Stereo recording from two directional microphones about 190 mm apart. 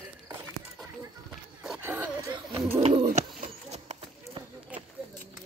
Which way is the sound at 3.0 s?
40° right (ahead or behind).